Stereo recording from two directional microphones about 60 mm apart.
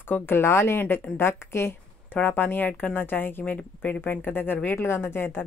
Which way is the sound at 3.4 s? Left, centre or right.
Left.